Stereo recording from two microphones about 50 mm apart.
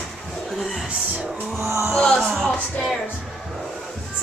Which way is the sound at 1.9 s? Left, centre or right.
Centre.